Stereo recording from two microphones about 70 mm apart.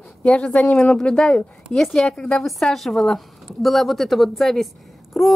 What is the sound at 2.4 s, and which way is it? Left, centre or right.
Speech, centre.